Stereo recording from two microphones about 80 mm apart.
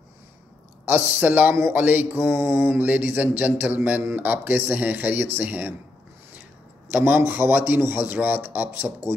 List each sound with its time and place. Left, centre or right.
0.8 s a man's voice: right
2.9 s a man's voice: right
6.9 s a man's voice: right